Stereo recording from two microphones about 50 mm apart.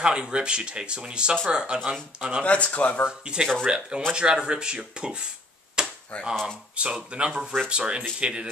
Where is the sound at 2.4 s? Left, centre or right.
Left.